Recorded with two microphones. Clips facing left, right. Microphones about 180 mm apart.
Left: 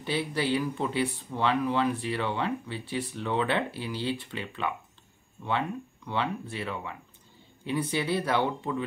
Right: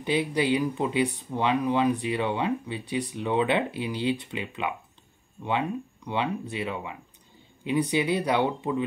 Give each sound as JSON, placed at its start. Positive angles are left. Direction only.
{"t": 0.0, "sound": "speech", "side_deg": -15}